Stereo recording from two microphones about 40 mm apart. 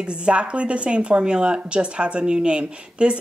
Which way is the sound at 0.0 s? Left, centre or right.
Right.